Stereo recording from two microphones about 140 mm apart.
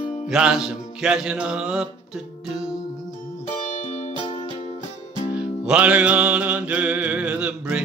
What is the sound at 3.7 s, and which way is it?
Music, 50° left (ahead or behind).